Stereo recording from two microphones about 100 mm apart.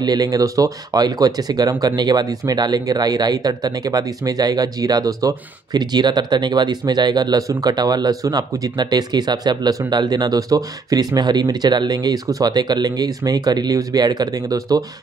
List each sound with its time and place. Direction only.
0.0 s speech: 40° right (ahead or behind)